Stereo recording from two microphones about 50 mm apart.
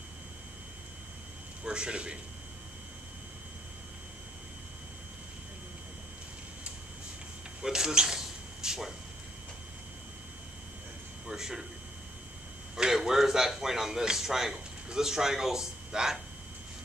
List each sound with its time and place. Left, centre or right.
1.6 s a man's voice: centre
7.6 s a sound: centre
11.2 s a man's voice: centre
12.7 s a man's voice: centre